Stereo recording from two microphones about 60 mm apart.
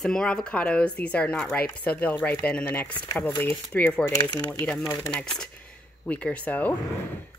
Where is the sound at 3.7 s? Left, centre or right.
Centre.